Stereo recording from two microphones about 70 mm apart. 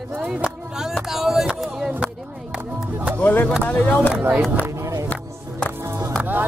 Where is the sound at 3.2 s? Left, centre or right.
Left.